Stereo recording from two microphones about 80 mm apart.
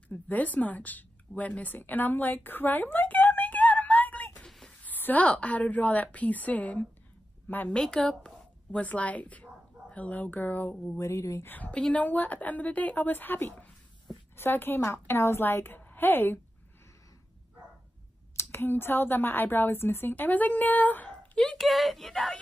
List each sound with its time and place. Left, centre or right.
0.1 s a woman's voice: left
4.5 s a sound: centre
4.8 s a woman's voice: left
7.7 s a woman's voice: centre
11.0 s speech: left
11.4 s speech: left
18.3 s speech: left; by 21.6 s centre
21.6 s a woman's voice: centre